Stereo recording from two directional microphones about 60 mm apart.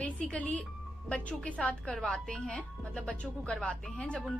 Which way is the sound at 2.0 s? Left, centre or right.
Centre.